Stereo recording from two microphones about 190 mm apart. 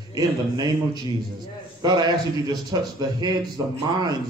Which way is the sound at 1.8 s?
20° right (ahead or behind).